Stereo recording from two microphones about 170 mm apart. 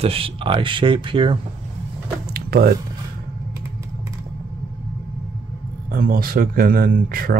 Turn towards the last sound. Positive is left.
turn(degrees=-55)  # may be behind; listen again after turning